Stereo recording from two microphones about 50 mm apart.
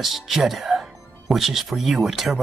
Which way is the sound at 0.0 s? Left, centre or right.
Centre.